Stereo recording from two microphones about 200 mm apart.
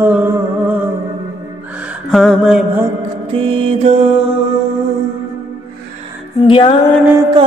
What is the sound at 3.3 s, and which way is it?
Music, 30° right (ahead or behind).